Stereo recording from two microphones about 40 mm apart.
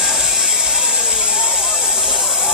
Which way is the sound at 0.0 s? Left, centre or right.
Centre.